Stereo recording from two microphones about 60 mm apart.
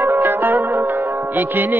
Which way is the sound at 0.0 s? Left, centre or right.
Right.